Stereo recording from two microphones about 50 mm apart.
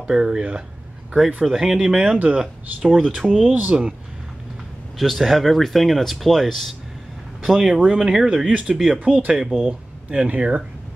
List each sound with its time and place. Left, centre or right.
0.0 s speech: centre
1.4 s speech: centre
3.7 s speech: centre
4.9 s speech: centre; by 10.6 s right